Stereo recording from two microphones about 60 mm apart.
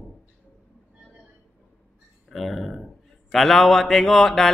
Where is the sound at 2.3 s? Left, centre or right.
Centre.